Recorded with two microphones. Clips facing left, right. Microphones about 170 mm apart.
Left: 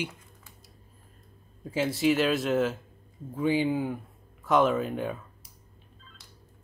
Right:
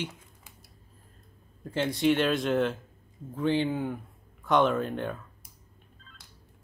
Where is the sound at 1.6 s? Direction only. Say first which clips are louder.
Even; 5° left (ahead or behind).